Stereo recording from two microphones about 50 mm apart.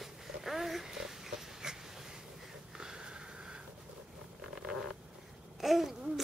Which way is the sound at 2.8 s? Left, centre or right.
Centre.